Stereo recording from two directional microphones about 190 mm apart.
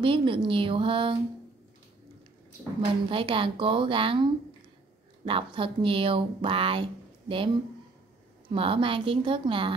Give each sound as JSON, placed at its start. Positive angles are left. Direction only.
{"t": 0.0, "sound": "speech", "side_deg": -25}
{"t": 3.1, "sound": "speech", "side_deg": -25}